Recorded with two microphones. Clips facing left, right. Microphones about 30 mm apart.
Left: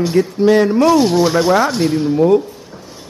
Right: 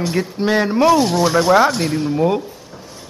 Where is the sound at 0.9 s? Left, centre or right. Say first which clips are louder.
Left 2 dB; centre.